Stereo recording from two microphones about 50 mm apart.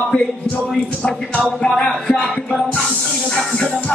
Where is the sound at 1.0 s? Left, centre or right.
Left.